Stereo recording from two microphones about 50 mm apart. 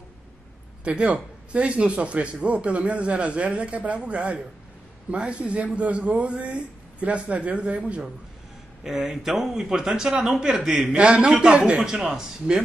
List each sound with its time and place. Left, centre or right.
0.8 s speech: right
8.8 s a man's voice: centre
10.9 s speech: right
11.9 s speech: centre